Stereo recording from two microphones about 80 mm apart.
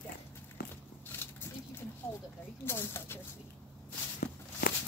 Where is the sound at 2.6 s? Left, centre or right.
Left.